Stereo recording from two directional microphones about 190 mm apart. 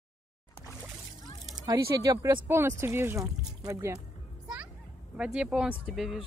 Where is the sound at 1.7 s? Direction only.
20° right (ahead or behind).